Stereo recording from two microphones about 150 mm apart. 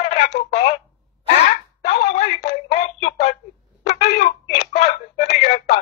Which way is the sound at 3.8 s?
45° left (ahead or behind).